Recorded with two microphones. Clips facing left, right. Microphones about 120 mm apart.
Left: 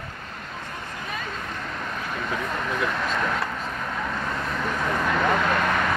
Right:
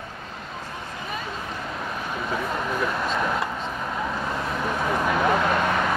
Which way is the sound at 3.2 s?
15° right (ahead or behind).